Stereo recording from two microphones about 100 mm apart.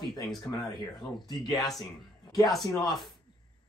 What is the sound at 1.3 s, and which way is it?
Speech, 50° left (ahead or behind).